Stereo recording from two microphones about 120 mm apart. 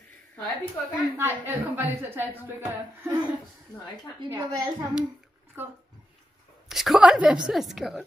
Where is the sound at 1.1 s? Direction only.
20° right (ahead or behind).